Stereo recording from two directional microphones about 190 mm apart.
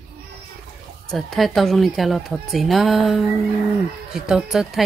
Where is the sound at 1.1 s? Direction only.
Centre (ahead or behind).